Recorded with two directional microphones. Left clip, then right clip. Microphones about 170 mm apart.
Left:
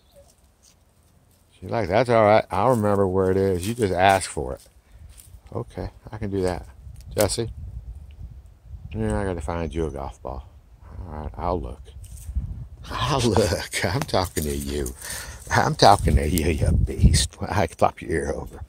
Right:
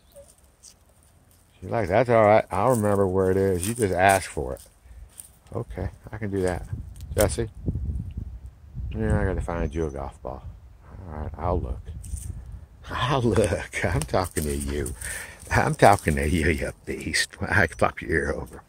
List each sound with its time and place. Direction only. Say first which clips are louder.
1.6 s speech: left 1 dB; 15° left (ahead or behind)
6.4 s speech: left 1 dB; 5° left (ahead or behind)
8.8 s speech: left 1 dB; 10° left (ahead or behind)